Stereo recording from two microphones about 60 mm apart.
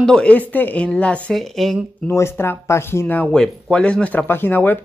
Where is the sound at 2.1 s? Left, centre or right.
Left.